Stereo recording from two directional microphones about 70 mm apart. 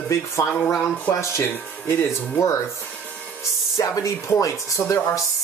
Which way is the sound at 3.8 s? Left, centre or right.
Left.